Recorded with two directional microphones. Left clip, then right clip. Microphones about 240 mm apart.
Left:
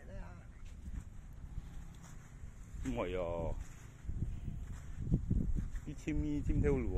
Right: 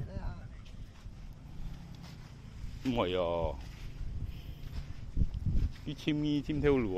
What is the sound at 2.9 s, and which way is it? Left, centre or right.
Speech, centre.